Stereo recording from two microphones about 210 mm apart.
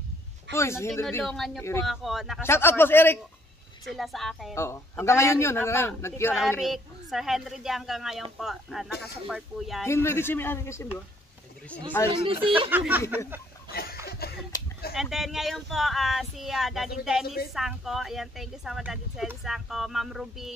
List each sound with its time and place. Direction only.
0.5 s a man's voice: 15° left (ahead or behind)
1.0 s speech: centre (ahead or behind)
1.6 s a man's voice: 10° left (ahead or behind)
1.9 s speech: centre (ahead or behind)
2.4 s a man's voice: 10° left (ahead or behind)
3.9 s speech: centre (ahead or behind)
4.6 s a man's voice: 10° left (ahead or behind)
6.6 s speech: centre (ahead or behind)
9.8 s a man's voice: 10° left (ahead or behind)
12.1 s speech: 25° right (ahead or behind)
12.6 s speech: 10° right (ahead or behind)
13.7 s a sound: 45° left (ahead or behind)
15.0 s speech: centre (ahead or behind)